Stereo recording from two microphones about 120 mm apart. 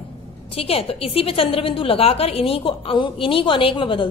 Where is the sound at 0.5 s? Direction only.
55° left (ahead or behind).